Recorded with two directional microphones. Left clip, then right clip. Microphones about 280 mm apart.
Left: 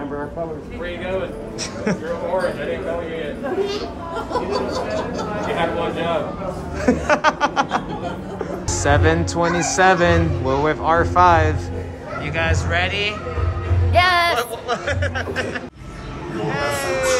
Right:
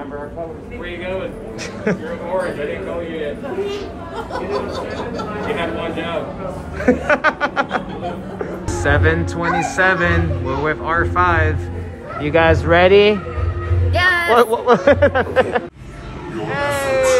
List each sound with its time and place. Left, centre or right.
1.9 s speech: centre
4.3 s speech: left
6.8 s snicker: centre
8.6 s speech: centre
12.3 s speech: centre
13.9 s speech: centre
14.3 s speech: centre
16.4 s a sound: centre